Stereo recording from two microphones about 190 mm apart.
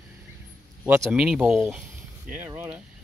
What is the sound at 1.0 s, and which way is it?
Speech, 5° right (ahead or behind).